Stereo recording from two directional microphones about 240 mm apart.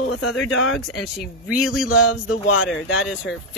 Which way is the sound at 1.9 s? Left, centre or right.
Left.